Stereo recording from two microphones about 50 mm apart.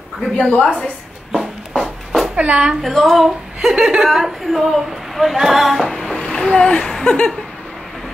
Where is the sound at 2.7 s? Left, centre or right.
Centre.